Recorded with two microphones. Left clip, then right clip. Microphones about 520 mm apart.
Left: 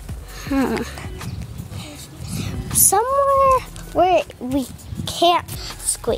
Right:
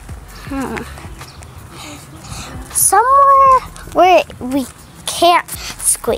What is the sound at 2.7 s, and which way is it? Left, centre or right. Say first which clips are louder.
Music: right 7 dB; left.